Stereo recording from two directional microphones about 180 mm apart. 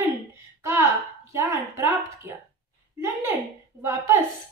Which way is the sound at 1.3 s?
15° right (ahead or behind).